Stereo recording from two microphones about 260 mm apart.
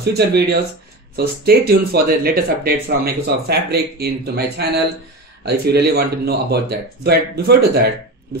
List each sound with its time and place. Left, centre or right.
0.0 s speech: right